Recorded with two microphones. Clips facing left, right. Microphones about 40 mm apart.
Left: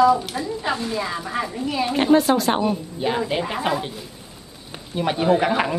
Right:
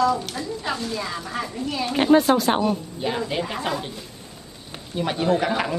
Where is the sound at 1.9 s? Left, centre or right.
Centre.